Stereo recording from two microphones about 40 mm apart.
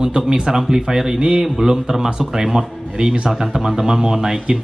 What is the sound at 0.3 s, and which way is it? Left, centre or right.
A man's voice, centre.